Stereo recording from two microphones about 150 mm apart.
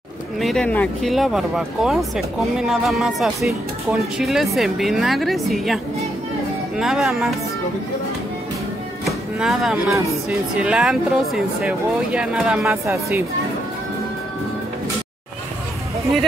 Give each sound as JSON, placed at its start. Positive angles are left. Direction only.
{"t": 0.4, "sound": "speech", "side_deg": 5}
{"t": 6.8, "sound": "speech", "side_deg": 0}
{"t": 9.0, "sound": "speech", "side_deg": 0}
{"t": 12.6, "sound": "speech", "side_deg": -20}